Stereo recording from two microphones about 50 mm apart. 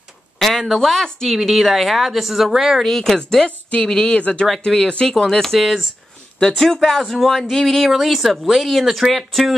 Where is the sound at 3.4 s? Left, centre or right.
Left.